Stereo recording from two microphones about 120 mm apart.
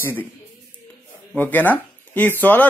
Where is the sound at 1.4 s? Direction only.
15° left (ahead or behind).